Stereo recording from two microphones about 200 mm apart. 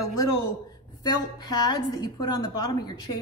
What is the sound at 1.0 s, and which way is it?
A woman's voice, 20° left (ahead or behind).